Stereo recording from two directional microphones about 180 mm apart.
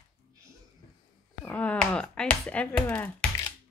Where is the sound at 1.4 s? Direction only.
10° left (ahead or behind).